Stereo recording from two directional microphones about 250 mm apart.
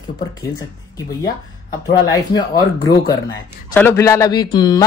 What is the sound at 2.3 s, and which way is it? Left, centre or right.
Speech, centre.